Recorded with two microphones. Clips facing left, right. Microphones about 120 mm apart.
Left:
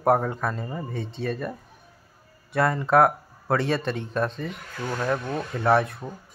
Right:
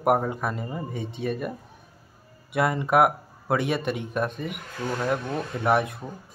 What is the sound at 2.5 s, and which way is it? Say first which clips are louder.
Speech: left 1 dB; 15° right (ahead or behind).